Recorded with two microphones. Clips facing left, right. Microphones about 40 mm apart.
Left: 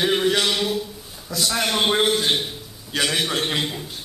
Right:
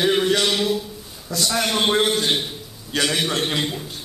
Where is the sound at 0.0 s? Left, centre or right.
Centre.